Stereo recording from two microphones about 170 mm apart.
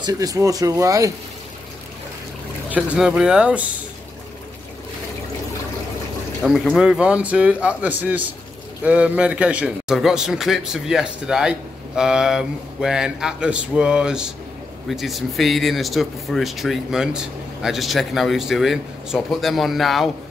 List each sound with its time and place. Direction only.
0.0 s speech: 20° right (ahead or behind)
2.7 s a man's voice: 5° right (ahead or behind)
6.4 s a man's voice: centre (ahead or behind)